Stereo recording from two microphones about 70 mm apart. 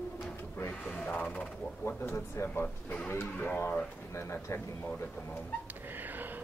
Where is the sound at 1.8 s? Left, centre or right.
Left.